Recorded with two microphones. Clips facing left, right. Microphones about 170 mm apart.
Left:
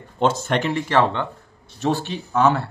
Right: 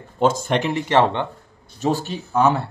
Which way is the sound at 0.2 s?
10° right (ahead or behind).